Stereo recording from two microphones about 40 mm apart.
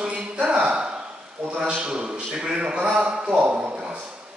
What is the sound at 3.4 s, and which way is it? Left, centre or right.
Speech, right.